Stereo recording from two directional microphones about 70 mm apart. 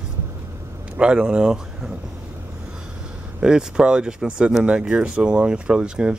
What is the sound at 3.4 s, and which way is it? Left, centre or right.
Speech, centre.